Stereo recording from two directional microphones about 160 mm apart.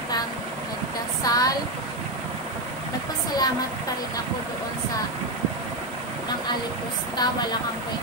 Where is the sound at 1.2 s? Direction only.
25° left (ahead or behind).